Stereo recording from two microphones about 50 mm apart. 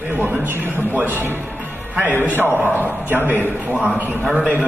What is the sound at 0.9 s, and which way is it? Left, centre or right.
Speech, right.